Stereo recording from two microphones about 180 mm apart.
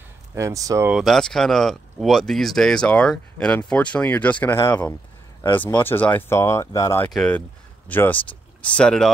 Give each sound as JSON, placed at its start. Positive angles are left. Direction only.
{"t": 0.3, "sound": "speech", "side_deg": -15}
{"t": 0.9, "sound": "speech", "side_deg": 0}
{"t": 7.1, "sound": "speech", "side_deg": 5}